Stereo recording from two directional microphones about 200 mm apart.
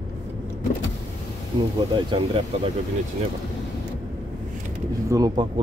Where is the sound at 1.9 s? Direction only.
25° right (ahead or behind).